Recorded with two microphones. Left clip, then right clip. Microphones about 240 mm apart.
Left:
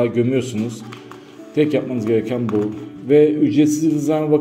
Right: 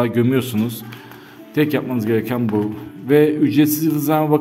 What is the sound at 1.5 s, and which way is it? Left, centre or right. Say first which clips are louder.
A man's voice: left 1 dB; right.